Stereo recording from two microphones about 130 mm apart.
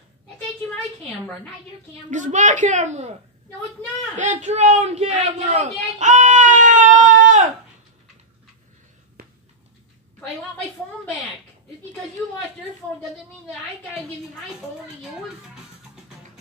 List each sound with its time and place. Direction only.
2.0 s a woman's voice: 70° right (ahead or behind)
4.2 s speech: 70° right (ahead or behind)